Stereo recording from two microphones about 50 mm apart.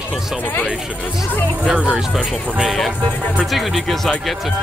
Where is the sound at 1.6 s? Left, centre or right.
Centre.